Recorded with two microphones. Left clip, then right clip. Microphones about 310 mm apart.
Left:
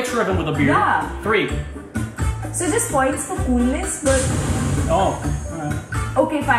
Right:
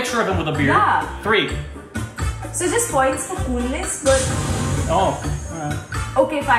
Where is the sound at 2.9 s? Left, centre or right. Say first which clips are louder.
Right 1 dB; centre.